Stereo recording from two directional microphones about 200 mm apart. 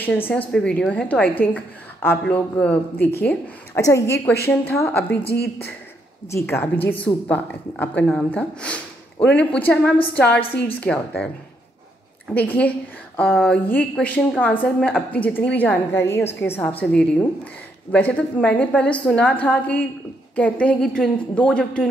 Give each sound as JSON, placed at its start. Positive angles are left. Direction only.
{"t": 0.0, "sound": "a woman's voice", "side_deg": 5}
{"t": 5.3, "sound": "speech", "side_deg": 55}
{"t": 6.3, "sound": "a woman's voice", "side_deg": 10}
{"t": 12.4, "sound": "a woman's voice", "side_deg": 10}